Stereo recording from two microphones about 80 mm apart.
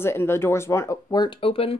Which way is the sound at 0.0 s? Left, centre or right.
Left.